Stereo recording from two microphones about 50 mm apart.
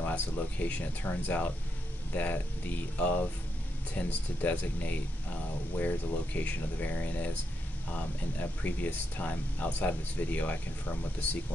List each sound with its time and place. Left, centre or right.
0.1 s speech: left